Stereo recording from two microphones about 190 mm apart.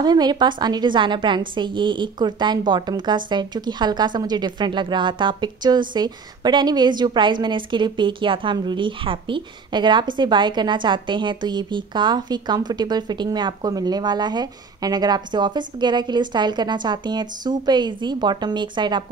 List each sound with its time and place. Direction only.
0.0 s a woman's voice: 20° right (ahead or behind)